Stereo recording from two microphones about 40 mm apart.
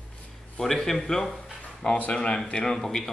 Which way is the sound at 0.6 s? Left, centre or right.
Centre.